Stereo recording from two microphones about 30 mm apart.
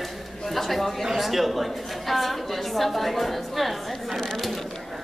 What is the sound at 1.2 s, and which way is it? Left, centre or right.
A woman's voice, centre.